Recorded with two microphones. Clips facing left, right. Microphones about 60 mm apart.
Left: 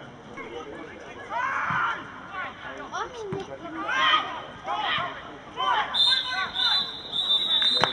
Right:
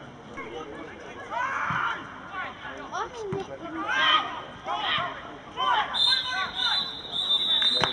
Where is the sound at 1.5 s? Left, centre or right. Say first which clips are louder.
Left 2 dB; centre.